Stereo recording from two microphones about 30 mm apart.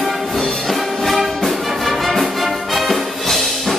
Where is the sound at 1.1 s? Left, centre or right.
Centre.